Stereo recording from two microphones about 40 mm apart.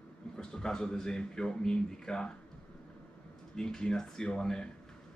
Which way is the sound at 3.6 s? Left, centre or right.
Centre.